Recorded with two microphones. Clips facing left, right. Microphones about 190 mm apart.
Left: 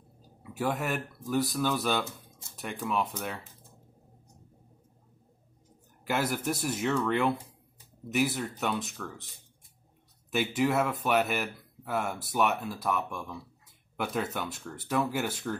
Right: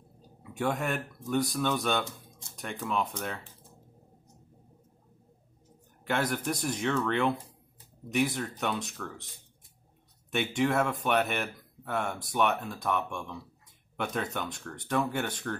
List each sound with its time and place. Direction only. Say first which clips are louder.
0.4 s speech: even; 5° left (ahead or behind)
6.0 s speech: even; 5° left (ahead or behind)
10.3 s speech: even; 5° left (ahead or behind)